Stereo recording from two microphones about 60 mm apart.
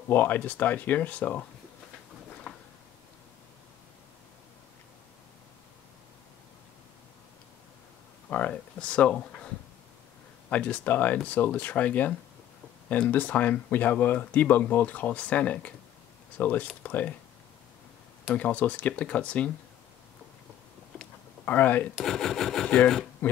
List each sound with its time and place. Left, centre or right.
0.1 s speech: left
2.5 s a sound: centre
8.3 s speech: left
10.5 s speech: left
13.1 s speech: left
18.3 s speech: left
21.5 s speech: left
22.0 s speech: centre